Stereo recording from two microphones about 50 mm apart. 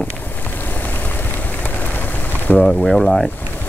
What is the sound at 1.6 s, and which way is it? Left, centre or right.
Vehicle, left.